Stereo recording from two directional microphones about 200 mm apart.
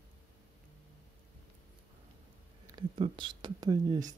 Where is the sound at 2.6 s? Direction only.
20° right (ahead or behind).